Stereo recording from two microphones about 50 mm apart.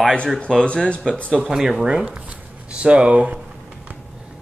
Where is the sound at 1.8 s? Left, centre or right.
Right.